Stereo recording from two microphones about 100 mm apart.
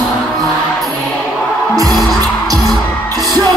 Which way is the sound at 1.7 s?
40° right (ahead or behind).